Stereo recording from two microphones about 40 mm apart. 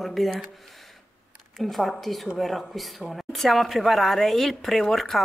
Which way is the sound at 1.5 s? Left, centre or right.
Centre.